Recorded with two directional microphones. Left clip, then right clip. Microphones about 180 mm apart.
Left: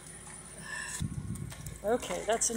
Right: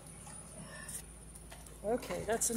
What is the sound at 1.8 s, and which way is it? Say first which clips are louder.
Speech: left 5 dB; 10° left (ahead or behind).